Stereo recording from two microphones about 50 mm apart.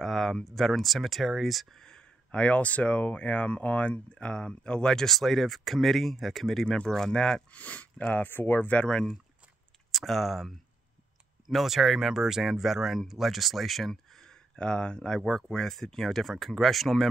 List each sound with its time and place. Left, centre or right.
0.0 s speech: centre
6.6 s speech: centre
7.5 s speech: left
8.3 s speech: left
8.7 s speech: centre
9.8 s speech: centre
14.2 s speech: centre